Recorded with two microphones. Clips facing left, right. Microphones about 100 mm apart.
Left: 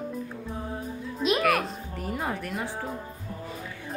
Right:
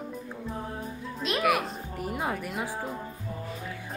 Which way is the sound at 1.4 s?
5° right (ahead or behind).